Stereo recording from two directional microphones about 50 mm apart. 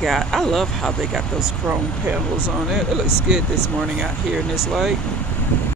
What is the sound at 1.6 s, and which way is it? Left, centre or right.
Vehicle, right.